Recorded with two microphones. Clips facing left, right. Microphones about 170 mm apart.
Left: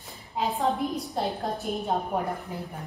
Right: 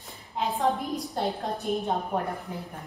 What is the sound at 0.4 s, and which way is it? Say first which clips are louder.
A woman's voice: even; centre (ahead or behind).